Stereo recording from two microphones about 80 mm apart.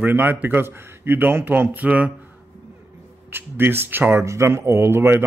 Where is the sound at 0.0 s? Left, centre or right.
Right.